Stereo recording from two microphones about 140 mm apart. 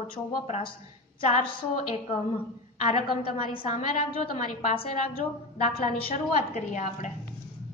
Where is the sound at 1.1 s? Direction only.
40° left (ahead or behind).